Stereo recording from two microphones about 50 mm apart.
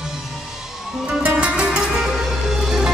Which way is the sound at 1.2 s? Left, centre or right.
Right.